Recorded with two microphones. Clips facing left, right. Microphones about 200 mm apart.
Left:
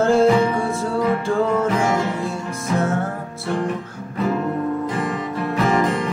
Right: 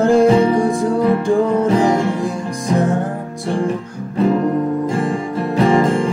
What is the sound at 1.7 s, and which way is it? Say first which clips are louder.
Music: right 6 dB; 30° right (ahead or behind).